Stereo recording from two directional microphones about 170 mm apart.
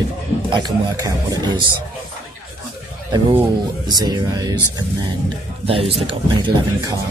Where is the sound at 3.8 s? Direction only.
25° right (ahead or behind).